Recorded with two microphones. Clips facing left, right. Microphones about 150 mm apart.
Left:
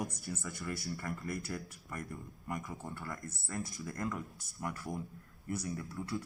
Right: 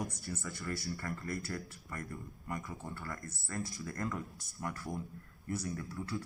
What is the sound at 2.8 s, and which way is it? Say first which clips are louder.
Speech: even; 15° left (ahead or behind).